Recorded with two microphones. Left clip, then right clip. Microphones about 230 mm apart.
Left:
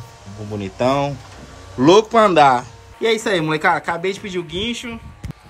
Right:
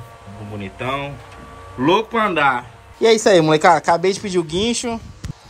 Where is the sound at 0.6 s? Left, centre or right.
Centre.